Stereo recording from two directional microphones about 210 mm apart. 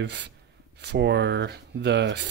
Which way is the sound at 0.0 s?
55° right (ahead or behind).